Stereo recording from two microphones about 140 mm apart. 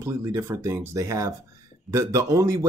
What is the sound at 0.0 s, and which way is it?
Speech, 20° right (ahead or behind).